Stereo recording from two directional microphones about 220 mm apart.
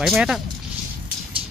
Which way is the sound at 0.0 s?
Centre (ahead or behind).